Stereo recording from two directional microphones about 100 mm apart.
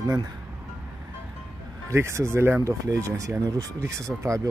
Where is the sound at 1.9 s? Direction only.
25° right (ahead or behind).